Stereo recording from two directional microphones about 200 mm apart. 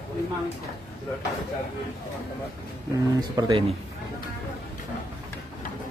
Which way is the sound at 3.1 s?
20° right (ahead or behind).